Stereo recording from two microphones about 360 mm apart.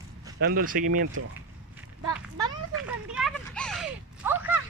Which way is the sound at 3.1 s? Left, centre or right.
Centre.